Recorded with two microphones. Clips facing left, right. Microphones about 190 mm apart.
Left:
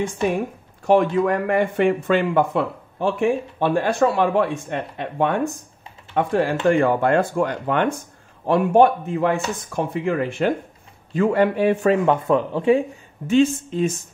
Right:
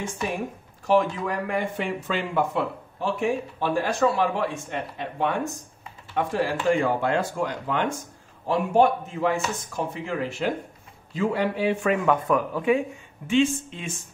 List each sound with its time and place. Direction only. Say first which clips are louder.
0.8 s speech: left 5 dB; 55° left (ahead or behind)
11.8 s speech: left 5 dB; 30° left (ahead or behind)
13.3 s speech: left 5 dB; 40° left (ahead or behind)